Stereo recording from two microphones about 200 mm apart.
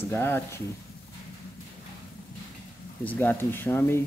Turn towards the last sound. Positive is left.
turn(degrees=10)  # may be behind; listen again after turning